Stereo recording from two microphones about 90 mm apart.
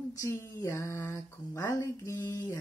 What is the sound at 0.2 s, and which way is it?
Speech, 30° left (ahead or behind).